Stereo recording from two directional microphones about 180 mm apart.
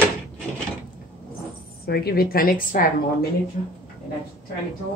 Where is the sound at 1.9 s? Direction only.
60° left (ahead or behind).